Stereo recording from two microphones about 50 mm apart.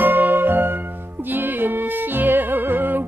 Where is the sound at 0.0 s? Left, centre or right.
Right.